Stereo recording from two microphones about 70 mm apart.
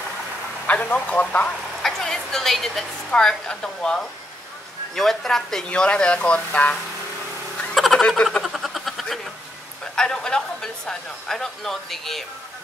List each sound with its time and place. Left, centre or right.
0.7 s speech: centre
1.8 s a woman's voice: centre
7.7 s a sound: centre
8.2 s speech: centre
8.5 s a sound: centre
9.9 s speech: centre